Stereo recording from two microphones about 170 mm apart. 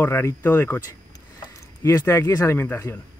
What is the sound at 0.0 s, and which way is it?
Speech, 15° left (ahead or behind).